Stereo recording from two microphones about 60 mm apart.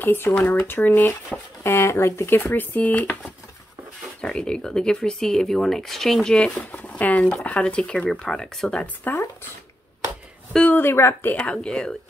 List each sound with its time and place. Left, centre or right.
0.0 s speech: left
1.6 s speech: left
4.2 s speech: centre
6.5 s speech: left; by 8.8 s centre
9.1 s speech: left
10.7 s speech: left
11.5 s speech: centre